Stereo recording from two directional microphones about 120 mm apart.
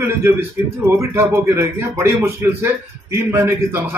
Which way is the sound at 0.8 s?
20° right (ahead or behind).